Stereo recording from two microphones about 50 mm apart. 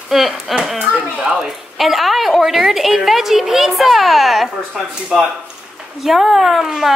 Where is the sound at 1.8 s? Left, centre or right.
Centre.